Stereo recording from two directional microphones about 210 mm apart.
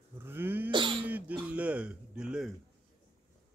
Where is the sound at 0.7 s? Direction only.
25° right (ahead or behind).